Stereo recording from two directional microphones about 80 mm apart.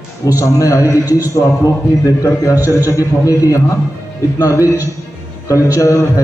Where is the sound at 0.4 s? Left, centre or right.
Left.